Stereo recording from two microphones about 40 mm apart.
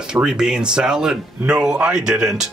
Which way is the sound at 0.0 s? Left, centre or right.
Centre.